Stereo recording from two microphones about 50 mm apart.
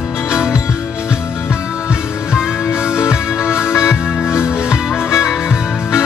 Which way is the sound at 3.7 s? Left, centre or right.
Left.